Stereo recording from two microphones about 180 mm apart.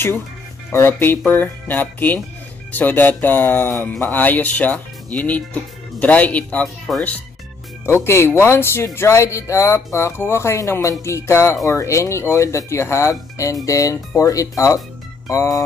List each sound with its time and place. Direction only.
0.7 s speech: 15° left (ahead or behind)